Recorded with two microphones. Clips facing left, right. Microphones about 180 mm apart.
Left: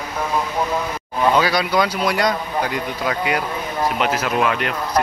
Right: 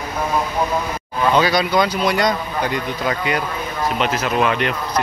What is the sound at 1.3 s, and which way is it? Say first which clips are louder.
Speech: right 3 dB; 5° left (ahead or behind).